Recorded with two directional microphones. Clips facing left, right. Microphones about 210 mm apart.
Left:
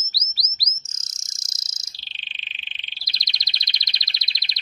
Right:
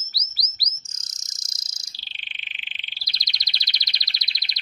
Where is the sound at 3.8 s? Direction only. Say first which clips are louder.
Left 1 dB; 25° left (ahead or behind).